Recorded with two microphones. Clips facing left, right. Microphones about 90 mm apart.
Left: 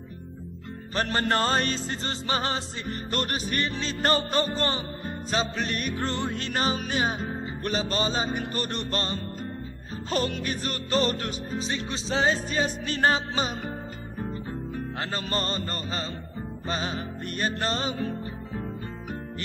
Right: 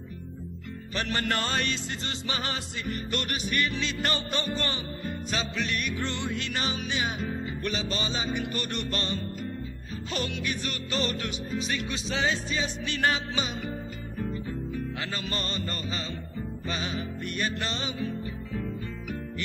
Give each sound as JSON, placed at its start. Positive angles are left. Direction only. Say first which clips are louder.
{"t": 0.9, "sound": "music", "louder": "left 4 dB", "side_deg": 40}